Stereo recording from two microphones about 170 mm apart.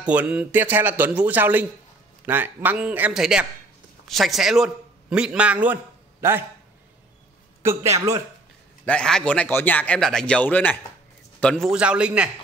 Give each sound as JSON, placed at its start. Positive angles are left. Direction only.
{"t": 0.0, "sound": "a man's voice", "side_deg": -10}
{"t": 7.6, "sound": "speech", "side_deg": -15}
{"t": 8.8, "sound": "a man's voice", "side_deg": 5}